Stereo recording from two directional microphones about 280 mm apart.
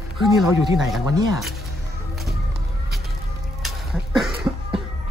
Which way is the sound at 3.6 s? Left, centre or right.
Centre.